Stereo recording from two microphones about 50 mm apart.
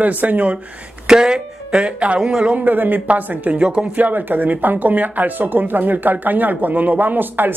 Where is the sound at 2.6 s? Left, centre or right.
Right.